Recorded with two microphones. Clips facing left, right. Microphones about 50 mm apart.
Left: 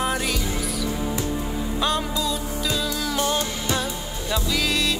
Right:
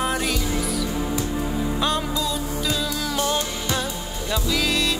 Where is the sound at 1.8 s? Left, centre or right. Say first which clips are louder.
Left 2 dB; centre.